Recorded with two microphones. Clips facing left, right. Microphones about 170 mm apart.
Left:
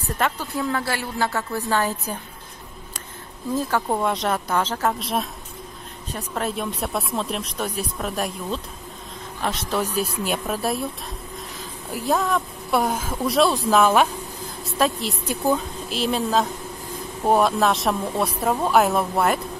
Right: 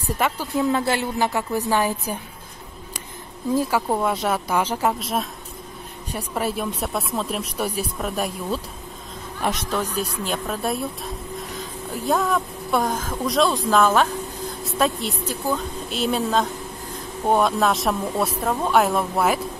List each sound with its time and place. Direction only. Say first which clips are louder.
0.0 s speech: right 1 dB; 10° right (ahead or behind)
0.6 s speech: right 5 dB; 20° right (ahead or behind)
3.5 s a woman's voice: right 1 dB; 10° right (ahead or behind)
9.4 s speech: right 2 dB; 15° right (ahead or behind)
9.7 s a woman's voice: left 1 dB; 5° left (ahead or behind)